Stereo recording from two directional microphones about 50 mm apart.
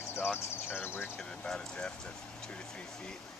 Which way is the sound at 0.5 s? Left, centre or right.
Left.